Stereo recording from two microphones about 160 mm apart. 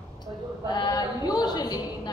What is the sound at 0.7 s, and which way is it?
Speech, 25° left (ahead or behind).